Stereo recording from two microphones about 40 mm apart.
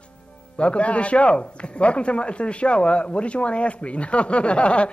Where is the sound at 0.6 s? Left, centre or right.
Left.